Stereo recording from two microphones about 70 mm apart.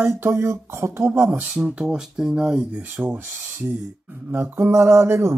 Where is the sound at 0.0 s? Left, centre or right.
Right.